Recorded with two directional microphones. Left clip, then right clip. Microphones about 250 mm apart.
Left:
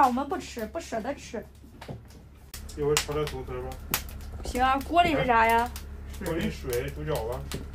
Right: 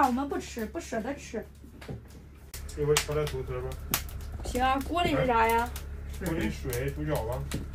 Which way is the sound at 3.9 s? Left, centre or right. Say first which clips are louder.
Left 1 dB; left.